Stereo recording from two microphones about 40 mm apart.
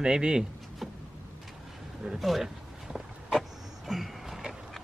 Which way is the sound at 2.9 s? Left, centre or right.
Centre.